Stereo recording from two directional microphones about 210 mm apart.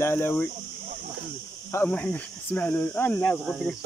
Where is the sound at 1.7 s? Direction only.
10° left (ahead or behind).